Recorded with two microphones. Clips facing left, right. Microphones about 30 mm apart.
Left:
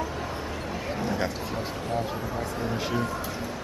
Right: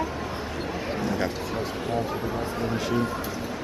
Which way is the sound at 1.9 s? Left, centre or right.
Centre.